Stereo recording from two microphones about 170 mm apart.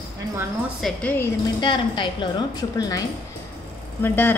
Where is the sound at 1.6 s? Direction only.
30° left (ahead or behind).